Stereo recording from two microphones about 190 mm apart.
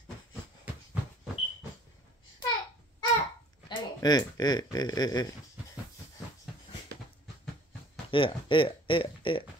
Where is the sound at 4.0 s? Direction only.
20° left (ahead or behind).